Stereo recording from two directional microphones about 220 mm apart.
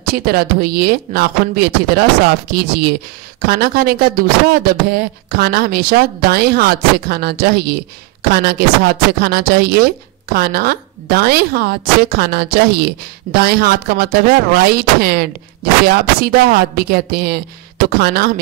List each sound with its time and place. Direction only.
0.0 s speech: 40° right (ahead or behind)